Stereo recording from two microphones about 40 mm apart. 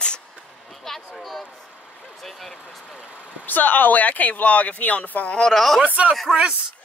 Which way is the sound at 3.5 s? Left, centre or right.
Left.